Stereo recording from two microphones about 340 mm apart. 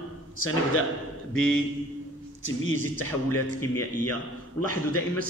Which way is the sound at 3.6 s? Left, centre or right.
Centre.